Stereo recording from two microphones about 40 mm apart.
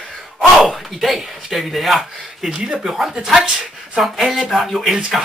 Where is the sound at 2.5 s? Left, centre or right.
Centre.